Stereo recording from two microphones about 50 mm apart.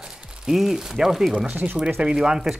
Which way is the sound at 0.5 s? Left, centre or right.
Centre.